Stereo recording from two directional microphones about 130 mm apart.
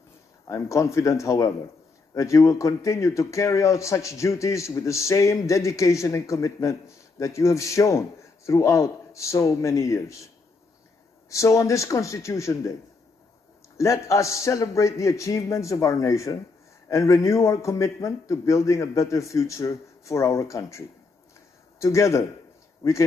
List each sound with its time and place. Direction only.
0.5 s speech: 25° left (ahead or behind)
13.7 s speech: 25° left (ahead or behind)